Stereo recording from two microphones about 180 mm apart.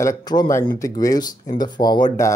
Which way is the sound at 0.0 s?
20° left (ahead or behind).